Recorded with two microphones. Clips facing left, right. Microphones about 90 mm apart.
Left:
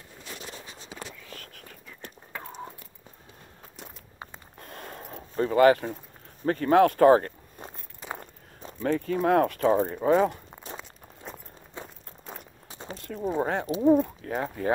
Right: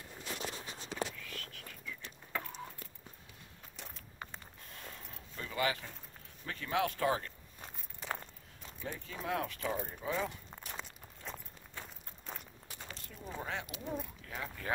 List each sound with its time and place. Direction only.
1.3 s whispering: 45° left (ahead or behind)
3.8 s walk: 10° left (ahead or behind)
4.6 s a sound: 55° left (ahead or behind)
6.4 s speech: 45° left (ahead or behind)
8.8 s speech: 65° left (ahead or behind)
9.8 s speech: 85° left; by 10.4 s 55° left (ahead or behind)
10.8 s a sound: 5° left (ahead or behind)
11.8 s walk: 20° left (ahead or behind)
12.6 s a sound: 25° left (ahead or behind)
13.4 s speech: 45° left (ahead or behind)